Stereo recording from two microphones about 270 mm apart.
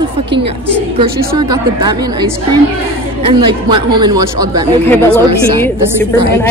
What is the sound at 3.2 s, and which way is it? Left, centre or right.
Speech, centre.